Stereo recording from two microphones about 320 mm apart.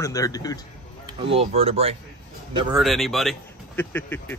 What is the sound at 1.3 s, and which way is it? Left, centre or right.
Speech, centre.